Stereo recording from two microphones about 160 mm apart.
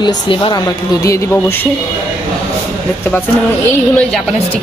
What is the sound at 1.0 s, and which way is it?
Speech, 20° left (ahead or behind).